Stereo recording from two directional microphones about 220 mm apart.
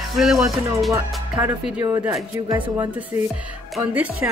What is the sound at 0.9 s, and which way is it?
Music, 15° right (ahead or behind).